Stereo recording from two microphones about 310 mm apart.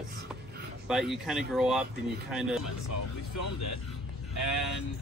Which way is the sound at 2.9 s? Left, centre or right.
Left.